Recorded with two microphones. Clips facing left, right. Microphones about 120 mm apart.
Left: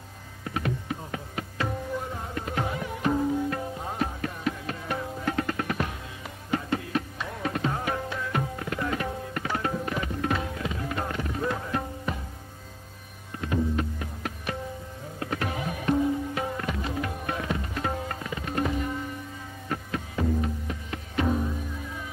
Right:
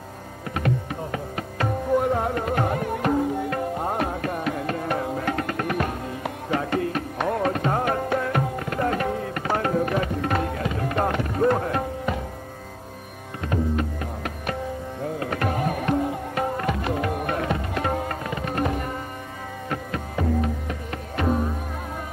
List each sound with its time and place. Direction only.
0.6 s music: 60° right (ahead or behind)
15.1 s music: 60° right (ahead or behind)
20.6 s music: 55° right (ahead or behind)